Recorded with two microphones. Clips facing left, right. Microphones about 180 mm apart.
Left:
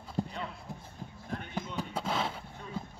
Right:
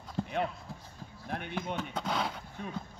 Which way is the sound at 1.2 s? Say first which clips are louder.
Right 2 dB; 70° right (ahead or behind).